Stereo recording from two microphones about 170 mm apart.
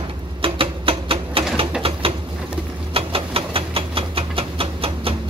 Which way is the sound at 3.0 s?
35° right (ahead or behind).